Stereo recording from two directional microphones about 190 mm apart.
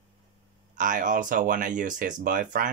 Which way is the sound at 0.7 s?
45° right (ahead or behind).